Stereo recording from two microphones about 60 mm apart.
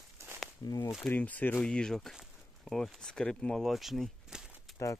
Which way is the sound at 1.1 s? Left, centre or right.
Left.